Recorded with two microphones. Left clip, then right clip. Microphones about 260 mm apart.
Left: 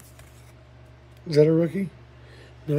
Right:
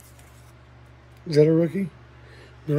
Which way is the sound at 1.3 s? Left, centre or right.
Centre.